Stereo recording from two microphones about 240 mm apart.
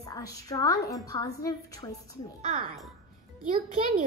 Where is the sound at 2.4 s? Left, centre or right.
Right.